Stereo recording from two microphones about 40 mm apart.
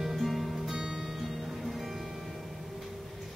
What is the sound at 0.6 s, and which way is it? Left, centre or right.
Music, centre.